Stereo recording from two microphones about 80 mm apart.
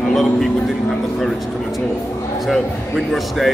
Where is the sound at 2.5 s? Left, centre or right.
Centre.